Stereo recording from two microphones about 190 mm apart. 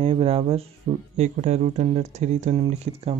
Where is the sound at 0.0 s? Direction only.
30° right (ahead or behind).